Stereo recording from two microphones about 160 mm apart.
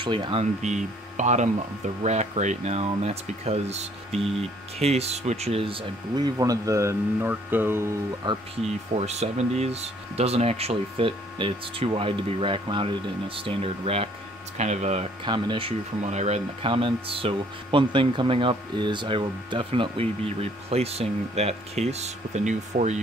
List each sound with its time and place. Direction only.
0.0 s speech: 30° right (ahead or behind); by 7.9 s 15° right (ahead or behind)
8.2 s speech: 30° right (ahead or behind)
8.9 s speech: 45° right (ahead or behind)
15.2 s speech: 30° right (ahead or behind)
16.0 s speech: 45° right (ahead or behind)